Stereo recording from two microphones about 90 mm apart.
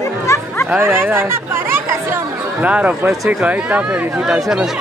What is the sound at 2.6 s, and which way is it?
Speech, 15° right (ahead or behind).